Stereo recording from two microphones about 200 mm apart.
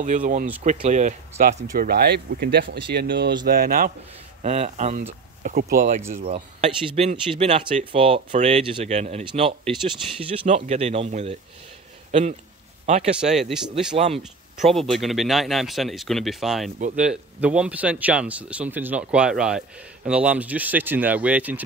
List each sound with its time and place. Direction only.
0.0 s speech: 40° right (ahead or behind)
1.9 s speech: 55° right (ahead or behind)
4.4 s speech: 35° right (ahead or behind)
13.2 s speech: centre (ahead or behind)
13.9 s speech: 30° right (ahead or behind)
14.6 s speech: centre (ahead or behind)